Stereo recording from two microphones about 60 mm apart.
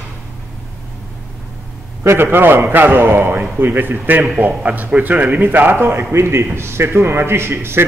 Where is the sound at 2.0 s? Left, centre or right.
Right.